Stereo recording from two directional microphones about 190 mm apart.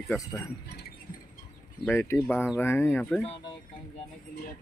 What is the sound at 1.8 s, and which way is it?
Speech, 15° left (ahead or behind).